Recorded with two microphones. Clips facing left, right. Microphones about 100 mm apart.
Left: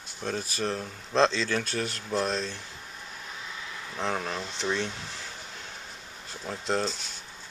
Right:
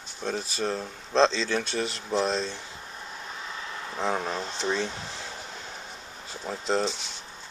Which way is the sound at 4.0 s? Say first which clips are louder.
Right 2 dB; 10° right (ahead or behind).